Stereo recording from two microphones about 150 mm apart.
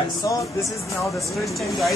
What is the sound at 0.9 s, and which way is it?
Speech, centre (ahead or behind).